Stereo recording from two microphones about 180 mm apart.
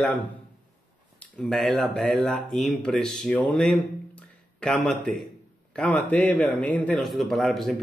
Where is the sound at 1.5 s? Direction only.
5° left (ahead or behind).